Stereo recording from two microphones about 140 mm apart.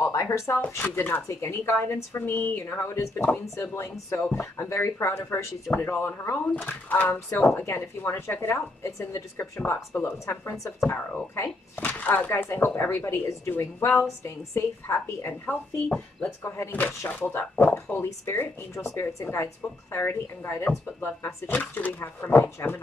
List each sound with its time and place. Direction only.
0.0 s speech: 20° left (ahead or behind)